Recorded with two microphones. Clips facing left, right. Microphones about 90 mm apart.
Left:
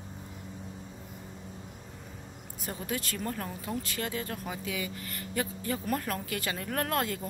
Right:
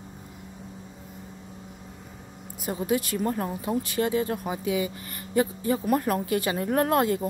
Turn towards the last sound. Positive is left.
turn(degrees=-25)  # may be behind; listen again after turning